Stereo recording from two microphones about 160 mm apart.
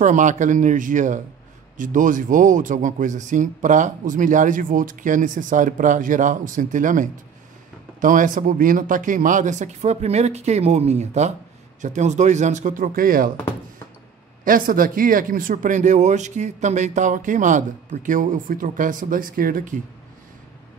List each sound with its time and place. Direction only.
0.0 s speech: 50° right (ahead or behind)
14.4 s speech: 60° right (ahead or behind)